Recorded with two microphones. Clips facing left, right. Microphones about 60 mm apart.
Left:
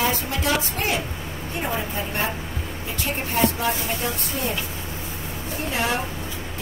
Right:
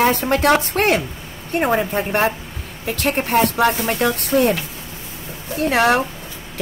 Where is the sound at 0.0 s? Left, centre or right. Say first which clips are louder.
Right 8 dB; right.